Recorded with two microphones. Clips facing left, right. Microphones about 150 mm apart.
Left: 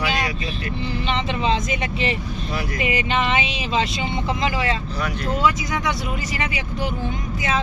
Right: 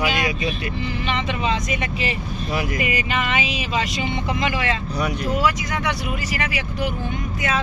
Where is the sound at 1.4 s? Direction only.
25° left (ahead or behind).